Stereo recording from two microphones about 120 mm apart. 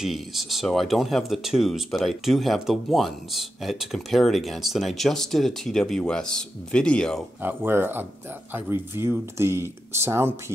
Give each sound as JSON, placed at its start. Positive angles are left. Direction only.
{"t": 0.0, "sound": "speech", "side_deg": 0}
{"t": 7.4, "sound": "speech", "side_deg": -20}